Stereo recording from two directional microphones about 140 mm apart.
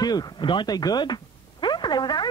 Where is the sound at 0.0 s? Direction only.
30° left (ahead or behind).